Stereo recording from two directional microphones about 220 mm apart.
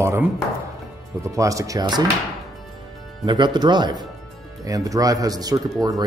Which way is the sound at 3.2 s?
20° right (ahead or behind).